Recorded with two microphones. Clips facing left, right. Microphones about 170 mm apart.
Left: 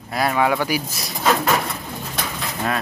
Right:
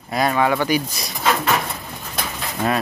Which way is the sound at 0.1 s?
5° left (ahead or behind).